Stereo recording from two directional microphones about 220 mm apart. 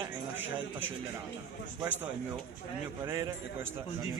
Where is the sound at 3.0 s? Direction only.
15° right (ahead or behind).